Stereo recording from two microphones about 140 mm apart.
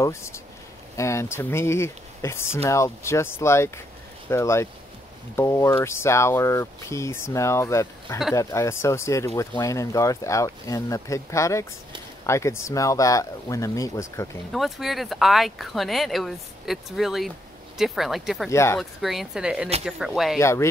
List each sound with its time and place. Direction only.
0.0 s speech: 20° left (ahead or behind)
14.5 s speech: centre (ahead or behind)
18.5 s speech: 20° left (ahead or behind)
18.8 s speech: centre (ahead or behind)
20.3 s speech: 20° left (ahead or behind)